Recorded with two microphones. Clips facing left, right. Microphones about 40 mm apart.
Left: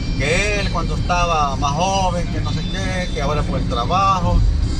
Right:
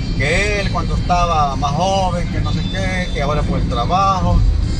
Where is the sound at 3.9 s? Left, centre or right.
Left.